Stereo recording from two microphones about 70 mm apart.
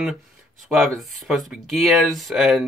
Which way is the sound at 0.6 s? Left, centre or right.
Centre.